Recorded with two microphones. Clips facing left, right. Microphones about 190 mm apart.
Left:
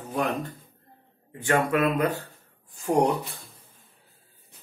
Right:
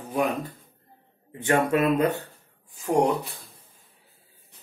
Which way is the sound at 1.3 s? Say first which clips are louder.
Right 1 dB; 25° right (ahead or behind).